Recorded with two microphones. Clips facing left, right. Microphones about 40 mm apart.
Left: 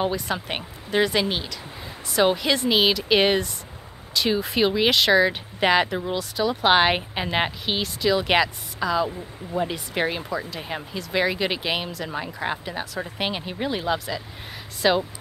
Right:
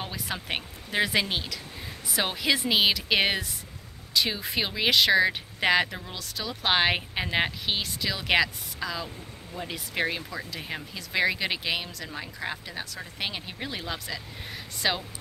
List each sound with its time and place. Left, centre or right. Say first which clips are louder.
0.1 s speech: left 5 dB; centre
12.1 s speech: left 6 dB; left; by 15.0 s centre